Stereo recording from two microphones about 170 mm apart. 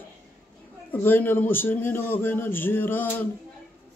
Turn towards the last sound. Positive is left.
turn(degrees=10)  # may be behind; listen again after turning